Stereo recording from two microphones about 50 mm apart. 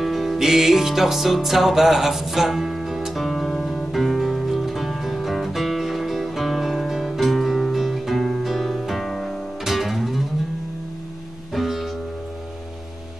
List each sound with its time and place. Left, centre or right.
0.0 s music: centre
11.5 s music: centre